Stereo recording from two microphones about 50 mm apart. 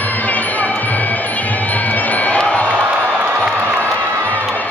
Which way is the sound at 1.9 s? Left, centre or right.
Left.